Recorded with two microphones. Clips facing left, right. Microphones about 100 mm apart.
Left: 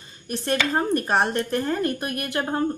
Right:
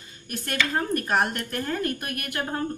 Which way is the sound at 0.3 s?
25° left (ahead or behind).